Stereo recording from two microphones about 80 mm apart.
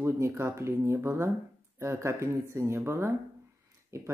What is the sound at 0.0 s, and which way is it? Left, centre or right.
Speech, right.